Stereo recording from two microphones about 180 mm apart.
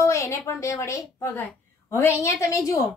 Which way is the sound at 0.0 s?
15° left (ahead or behind).